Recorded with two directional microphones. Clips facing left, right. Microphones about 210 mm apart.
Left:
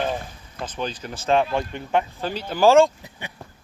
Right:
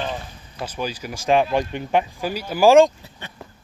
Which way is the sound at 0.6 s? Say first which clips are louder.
Right 1 dB; 10° right (ahead or behind).